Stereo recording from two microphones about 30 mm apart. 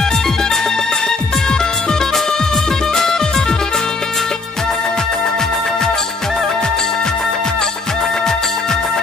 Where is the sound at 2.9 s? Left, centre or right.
Centre.